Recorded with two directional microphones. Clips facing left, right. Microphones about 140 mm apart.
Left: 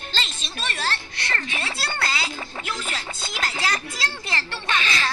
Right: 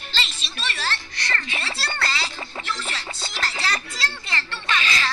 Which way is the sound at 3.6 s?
20° left (ahead or behind).